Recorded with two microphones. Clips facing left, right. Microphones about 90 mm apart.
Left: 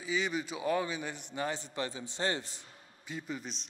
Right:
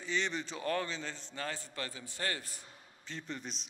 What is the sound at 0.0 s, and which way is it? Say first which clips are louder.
A man's voice: left 2 dB; 5° left (ahead or behind).